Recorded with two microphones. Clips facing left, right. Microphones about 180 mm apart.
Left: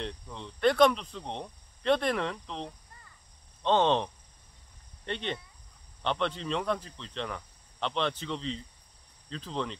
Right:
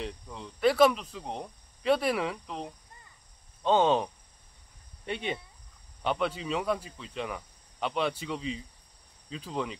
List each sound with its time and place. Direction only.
0.0 s speech: 5° right (ahead or behind)